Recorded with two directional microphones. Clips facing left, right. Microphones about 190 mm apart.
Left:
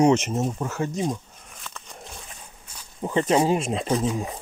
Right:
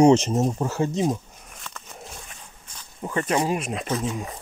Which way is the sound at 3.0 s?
25° left (ahead or behind).